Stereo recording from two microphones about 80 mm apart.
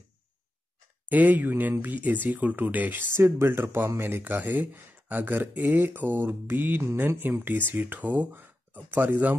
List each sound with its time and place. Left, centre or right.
1.0 s speech: right